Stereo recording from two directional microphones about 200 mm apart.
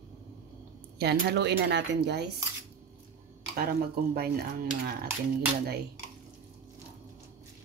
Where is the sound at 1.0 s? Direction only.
55° right (ahead or behind).